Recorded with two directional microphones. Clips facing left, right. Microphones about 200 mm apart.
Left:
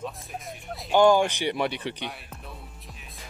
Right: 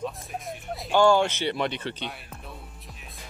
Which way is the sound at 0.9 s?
15° left (ahead or behind).